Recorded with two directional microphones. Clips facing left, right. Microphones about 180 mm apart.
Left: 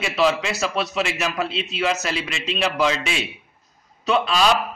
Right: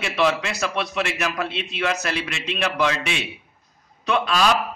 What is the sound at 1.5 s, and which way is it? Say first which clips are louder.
Speech: left 2 dB; 55° right (ahead or behind).